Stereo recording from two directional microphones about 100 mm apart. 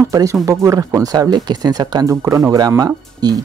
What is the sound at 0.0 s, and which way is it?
Speech, 35° right (ahead or behind).